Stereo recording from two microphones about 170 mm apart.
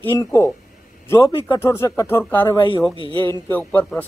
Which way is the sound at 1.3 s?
30° left (ahead or behind).